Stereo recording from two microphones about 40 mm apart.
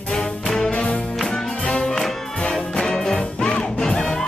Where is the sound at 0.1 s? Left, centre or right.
Centre.